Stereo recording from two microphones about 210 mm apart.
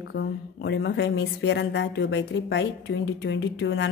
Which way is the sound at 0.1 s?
55° left (ahead or behind).